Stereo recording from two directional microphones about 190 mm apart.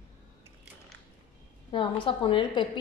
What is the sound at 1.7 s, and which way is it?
Speech, 25° left (ahead or behind).